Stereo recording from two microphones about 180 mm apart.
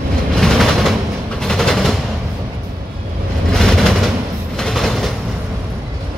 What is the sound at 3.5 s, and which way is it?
Train, 5° left (ahead or behind).